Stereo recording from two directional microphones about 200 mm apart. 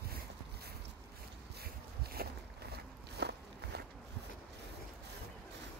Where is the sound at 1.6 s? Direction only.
50° right (ahead or behind).